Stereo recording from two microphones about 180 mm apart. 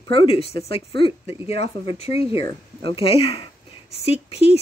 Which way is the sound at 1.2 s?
15° right (ahead or behind).